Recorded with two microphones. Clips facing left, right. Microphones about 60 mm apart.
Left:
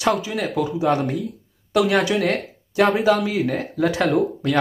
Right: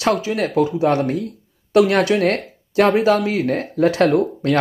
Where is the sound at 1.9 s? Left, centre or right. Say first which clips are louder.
Right 3 dB; centre.